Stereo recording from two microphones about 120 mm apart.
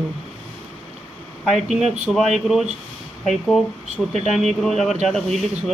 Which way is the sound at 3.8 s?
70° right (ahead or behind).